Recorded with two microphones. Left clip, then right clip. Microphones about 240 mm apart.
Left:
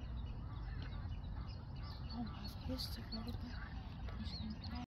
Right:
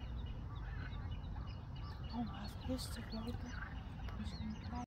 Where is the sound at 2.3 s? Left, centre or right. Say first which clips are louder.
Right 2 dB; right.